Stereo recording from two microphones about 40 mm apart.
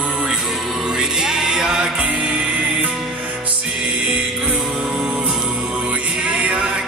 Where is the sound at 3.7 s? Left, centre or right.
Centre.